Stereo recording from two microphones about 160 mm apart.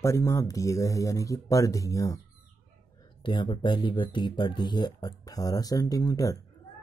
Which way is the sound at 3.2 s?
30° left (ahead or behind).